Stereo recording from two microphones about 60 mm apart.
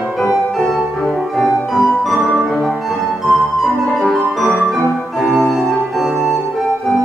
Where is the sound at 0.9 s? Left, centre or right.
Centre.